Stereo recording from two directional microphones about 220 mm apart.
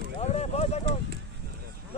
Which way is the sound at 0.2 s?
30° left (ahead or behind).